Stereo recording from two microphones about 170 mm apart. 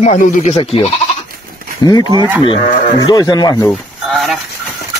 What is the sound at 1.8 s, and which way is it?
Speech, 25° left (ahead or behind).